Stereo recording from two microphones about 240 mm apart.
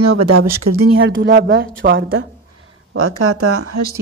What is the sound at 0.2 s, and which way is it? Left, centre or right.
Speech, right.